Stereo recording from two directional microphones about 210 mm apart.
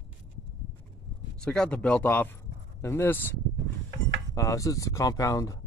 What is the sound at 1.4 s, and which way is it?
Speech, 5° left (ahead or behind).